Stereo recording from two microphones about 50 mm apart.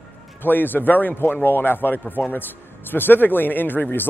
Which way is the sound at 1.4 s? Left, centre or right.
Left.